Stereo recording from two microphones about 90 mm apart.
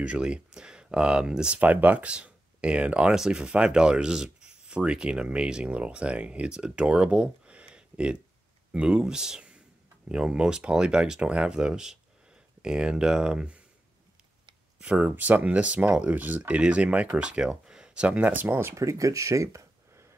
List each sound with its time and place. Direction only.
0.0 s speech: 10° right (ahead or behind)
14.8 s speech: 15° right (ahead or behind); by 20.1 s 35° right (ahead or behind)